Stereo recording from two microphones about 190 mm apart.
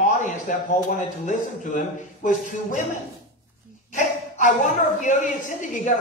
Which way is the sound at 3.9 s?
40° left (ahead or behind).